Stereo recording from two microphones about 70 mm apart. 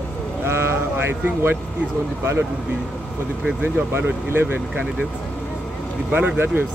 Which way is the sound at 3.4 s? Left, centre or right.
Right.